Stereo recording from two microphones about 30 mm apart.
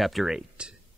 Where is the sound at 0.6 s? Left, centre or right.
Right.